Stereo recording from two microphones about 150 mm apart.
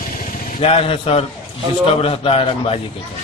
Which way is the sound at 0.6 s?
40° left (ahead or behind).